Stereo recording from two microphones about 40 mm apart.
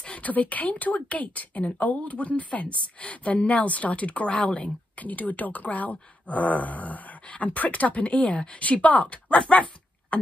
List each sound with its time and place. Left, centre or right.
0.2 s a woman's voice: left
9.4 s dog: left